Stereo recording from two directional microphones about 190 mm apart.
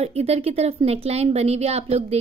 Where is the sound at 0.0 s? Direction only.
30° right (ahead or behind).